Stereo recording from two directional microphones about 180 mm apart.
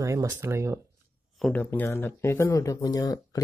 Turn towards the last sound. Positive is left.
turn(degrees=20)  # may be behind; listen again after turning